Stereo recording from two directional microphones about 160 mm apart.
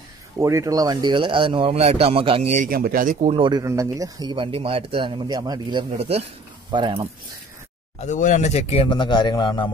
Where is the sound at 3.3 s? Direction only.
30° right (ahead or behind).